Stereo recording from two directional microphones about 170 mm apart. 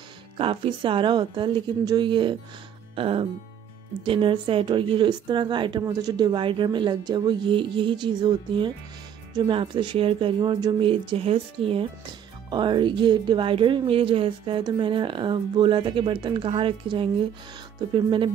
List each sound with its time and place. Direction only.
0.4 s speech: 30° right (ahead or behind)